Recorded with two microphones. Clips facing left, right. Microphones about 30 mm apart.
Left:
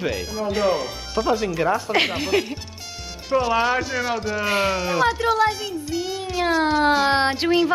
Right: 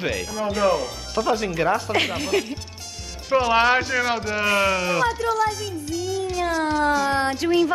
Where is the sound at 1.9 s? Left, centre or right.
Centre.